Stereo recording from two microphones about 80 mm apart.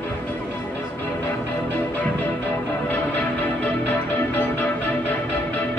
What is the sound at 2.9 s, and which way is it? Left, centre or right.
Music, centre.